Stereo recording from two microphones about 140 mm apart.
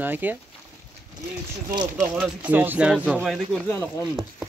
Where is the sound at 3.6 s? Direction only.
15° left (ahead or behind).